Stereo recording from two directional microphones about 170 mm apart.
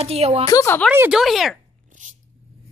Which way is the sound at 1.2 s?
Centre (ahead or behind).